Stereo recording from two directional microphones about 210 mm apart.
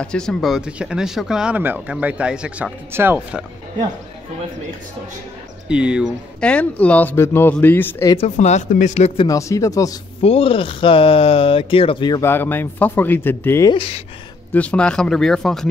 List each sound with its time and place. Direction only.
0.0 s speech: 5° left (ahead or behind)
5.7 s speech: 5° right (ahead or behind); by 8.2 s 15° left (ahead or behind)
8.2 s speech: 35° left (ahead or behind)
9.3 s speech: 15° left (ahead or behind)
10.2 s speech: 25° left (ahead or behind)
13.7 s speech: 30° left (ahead or behind)
14.5 s speech: 5° left (ahead or behind)